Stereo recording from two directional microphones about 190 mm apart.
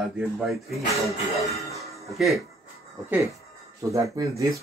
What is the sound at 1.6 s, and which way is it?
Music, 15° left (ahead or behind).